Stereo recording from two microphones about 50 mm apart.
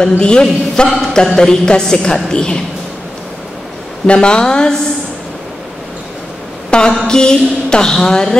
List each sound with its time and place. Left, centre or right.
0.0 s speech: centre
4.1 s speech: centre
6.9 s speech: centre